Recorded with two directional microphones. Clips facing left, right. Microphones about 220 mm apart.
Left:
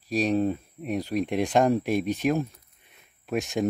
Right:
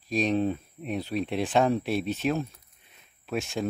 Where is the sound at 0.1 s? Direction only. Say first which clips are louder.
Left 1 dB; 10° left (ahead or behind).